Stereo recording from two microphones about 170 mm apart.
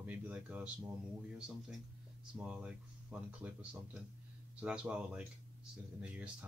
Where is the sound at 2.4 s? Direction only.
5° right (ahead or behind).